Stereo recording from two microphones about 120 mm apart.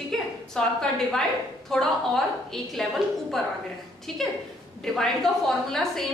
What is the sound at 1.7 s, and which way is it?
A woman's voice, 5° left (ahead or behind).